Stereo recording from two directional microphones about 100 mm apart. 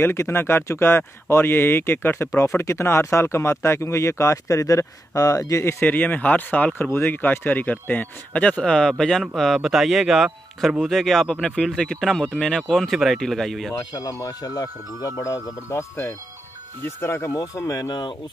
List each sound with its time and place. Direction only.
0.0 s speech: 25° left (ahead or behind); by 13.7 s centre (ahead or behind)
13.7 s speech: 35° left (ahead or behind)
17.0 s speech: 30° left (ahead or behind); by 18.1 s 45° left (ahead or behind)